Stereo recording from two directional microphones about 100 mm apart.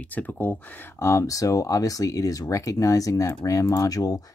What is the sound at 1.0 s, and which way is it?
Speech, 30° left (ahead or behind).